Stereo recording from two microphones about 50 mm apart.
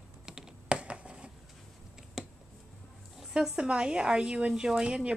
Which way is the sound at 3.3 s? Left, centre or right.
Centre.